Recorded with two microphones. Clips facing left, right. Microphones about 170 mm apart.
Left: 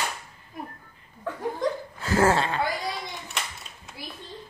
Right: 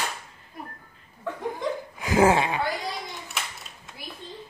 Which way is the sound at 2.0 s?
15° right (ahead or behind).